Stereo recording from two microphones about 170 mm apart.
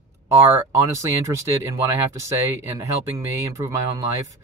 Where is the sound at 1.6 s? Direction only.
15° right (ahead or behind).